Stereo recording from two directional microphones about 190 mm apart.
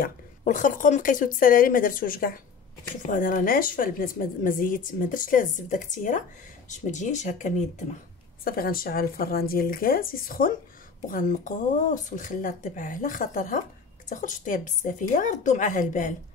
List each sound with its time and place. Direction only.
0.4 s a woman's voice: 40° left (ahead or behind)
8.5 s a woman's voice: 50° left (ahead or behind)